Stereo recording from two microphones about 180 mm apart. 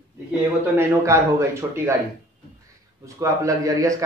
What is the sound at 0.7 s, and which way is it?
A man's voice, 15° right (ahead or behind).